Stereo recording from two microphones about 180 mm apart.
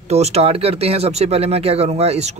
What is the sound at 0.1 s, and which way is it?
Speech, 35° right (ahead or behind).